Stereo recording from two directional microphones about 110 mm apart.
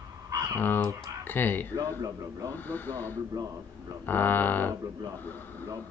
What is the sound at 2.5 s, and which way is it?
Speech, 15° left (ahead or behind).